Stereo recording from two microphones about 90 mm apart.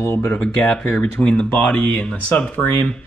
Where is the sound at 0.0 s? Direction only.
30° left (ahead or behind).